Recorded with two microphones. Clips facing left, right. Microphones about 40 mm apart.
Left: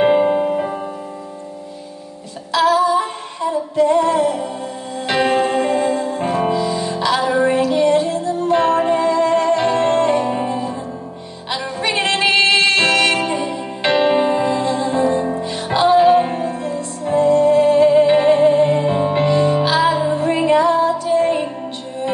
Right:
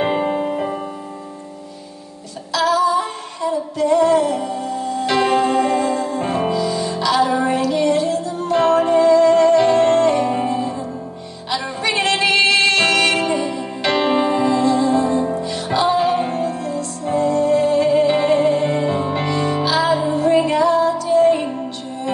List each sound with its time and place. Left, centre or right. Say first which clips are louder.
0.0 s music: left 5 dB; centre
2.5 s female singing: left 2 dB; left
5.1 s music: even; left
10.1 s music: even; centre
11.5 s music: even; left
12.9 s music: even; centre